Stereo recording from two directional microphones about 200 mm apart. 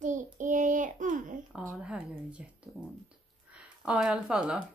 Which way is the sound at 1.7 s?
5° right (ahead or behind).